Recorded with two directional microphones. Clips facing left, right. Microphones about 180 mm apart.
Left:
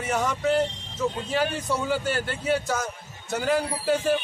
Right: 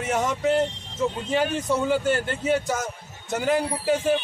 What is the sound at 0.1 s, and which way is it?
A man's voice, 20° right (ahead or behind).